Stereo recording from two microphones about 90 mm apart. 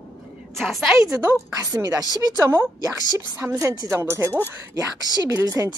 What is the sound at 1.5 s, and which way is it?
A woman's voice, 40° right (ahead or behind).